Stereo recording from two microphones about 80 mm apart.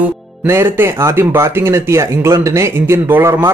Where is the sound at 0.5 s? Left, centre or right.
Right.